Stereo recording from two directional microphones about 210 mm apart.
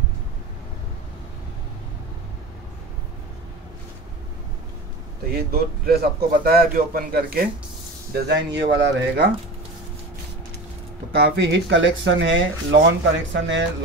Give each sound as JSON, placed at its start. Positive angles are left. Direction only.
{"t": 5.3, "sound": "speech", "side_deg": -45}
{"t": 8.1, "sound": "speech", "side_deg": -55}
{"t": 11.2, "sound": "speech", "side_deg": -60}